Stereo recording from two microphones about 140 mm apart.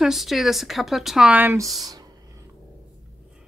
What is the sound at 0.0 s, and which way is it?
Speech, centre (ahead or behind).